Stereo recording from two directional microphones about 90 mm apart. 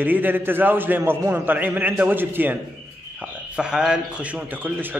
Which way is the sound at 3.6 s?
10° right (ahead or behind).